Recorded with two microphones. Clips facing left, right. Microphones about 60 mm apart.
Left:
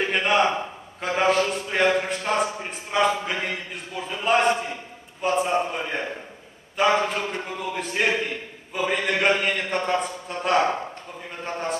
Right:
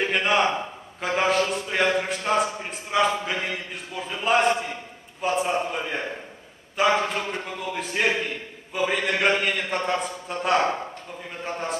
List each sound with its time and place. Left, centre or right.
0.0 s a man's voice: centre